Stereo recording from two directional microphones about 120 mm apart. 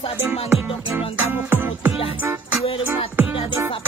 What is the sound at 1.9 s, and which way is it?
Music, 50° left (ahead or behind).